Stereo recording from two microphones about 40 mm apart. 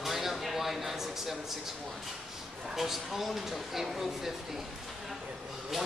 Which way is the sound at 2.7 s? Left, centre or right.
Centre.